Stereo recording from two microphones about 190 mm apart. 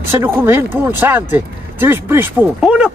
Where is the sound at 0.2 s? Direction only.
10° right (ahead or behind).